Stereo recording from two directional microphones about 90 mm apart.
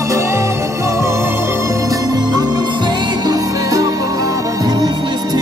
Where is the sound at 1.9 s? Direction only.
45° right (ahead or behind).